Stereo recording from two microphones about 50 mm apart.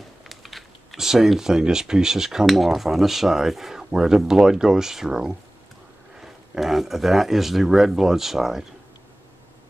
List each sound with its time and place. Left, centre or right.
0.3 s speech: centre